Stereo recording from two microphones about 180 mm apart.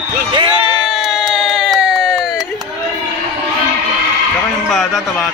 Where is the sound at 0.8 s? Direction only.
Centre (ahead or behind).